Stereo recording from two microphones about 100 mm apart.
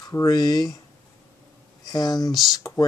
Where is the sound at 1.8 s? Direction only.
45° left (ahead or behind).